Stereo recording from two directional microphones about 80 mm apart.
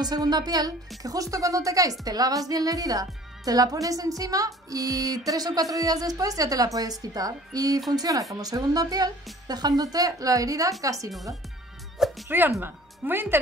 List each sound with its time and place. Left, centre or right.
0.0 s a woman's voice: right
12.3 s speech: right